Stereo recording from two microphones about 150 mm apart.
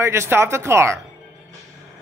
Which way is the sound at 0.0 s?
20° right (ahead or behind).